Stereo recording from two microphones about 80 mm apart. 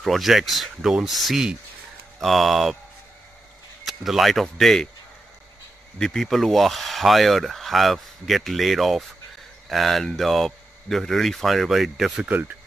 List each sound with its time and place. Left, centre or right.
0.0 s speech: centre
3.8 s speech: centre
5.9 s speech: centre
12.3 s speech: centre